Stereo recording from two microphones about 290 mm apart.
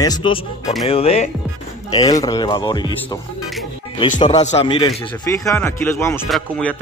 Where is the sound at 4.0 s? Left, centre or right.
Centre.